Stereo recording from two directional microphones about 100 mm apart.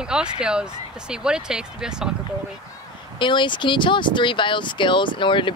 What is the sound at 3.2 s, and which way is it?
Speech, 55° left (ahead or behind).